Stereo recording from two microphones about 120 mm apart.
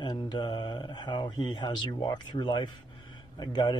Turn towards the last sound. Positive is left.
turn(degrees=35)  # may be behind; listen again after turning